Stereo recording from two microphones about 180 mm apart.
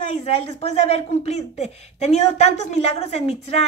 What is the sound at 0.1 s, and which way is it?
A woman's voice, 35° left (ahead or behind).